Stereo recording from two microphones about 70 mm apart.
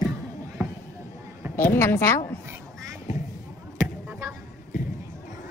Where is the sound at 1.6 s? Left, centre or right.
Left.